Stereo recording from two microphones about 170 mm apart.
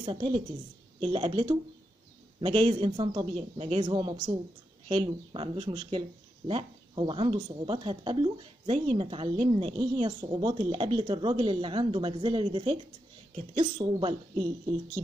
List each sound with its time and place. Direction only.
0.0 s speech: 30° right (ahead or behind)